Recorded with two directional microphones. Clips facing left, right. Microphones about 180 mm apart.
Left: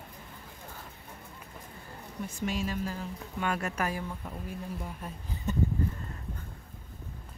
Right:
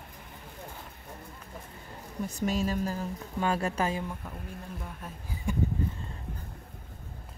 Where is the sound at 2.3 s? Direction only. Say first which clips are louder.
Right 4 dB; 40° right (ahead or behind).